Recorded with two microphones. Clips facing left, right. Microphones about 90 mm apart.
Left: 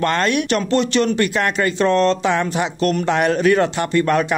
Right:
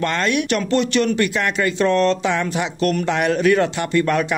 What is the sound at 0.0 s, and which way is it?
Speech, 45° left (ahead or behind).